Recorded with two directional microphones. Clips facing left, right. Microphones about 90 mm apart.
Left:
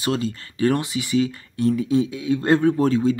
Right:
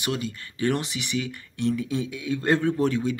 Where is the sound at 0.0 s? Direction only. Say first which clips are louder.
Left 5 dB; 30° left (ahead or behind).